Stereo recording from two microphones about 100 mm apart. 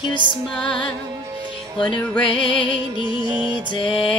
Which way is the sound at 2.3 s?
55° left (ahead or behind).